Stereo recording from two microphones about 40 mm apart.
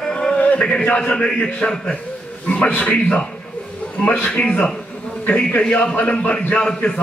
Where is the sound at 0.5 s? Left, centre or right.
Left.